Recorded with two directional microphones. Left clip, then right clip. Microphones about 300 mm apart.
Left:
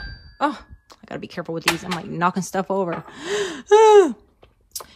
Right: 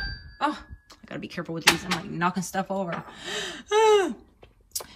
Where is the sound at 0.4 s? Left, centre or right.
Left.